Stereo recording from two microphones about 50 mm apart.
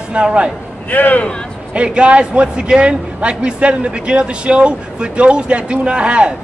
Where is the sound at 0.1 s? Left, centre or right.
Right.